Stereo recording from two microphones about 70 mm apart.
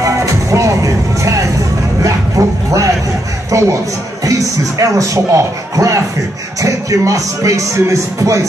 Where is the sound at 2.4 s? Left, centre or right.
Right.